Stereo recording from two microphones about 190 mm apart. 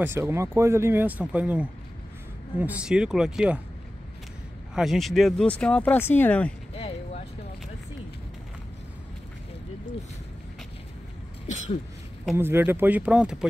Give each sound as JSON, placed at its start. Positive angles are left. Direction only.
{"t": 0.0, "sound": "speech", "side_deg": -15}
{"t": 4.7, "sound": "speech", "side_deg": 0}
{"t": 6.8, "sound": "a sound", "side_deg": 35}
{"t": 11.4, "sound": "throat clearing", "side_deg": 40}
{"t": 12.4, "sound": "speech", "side_deg": -10}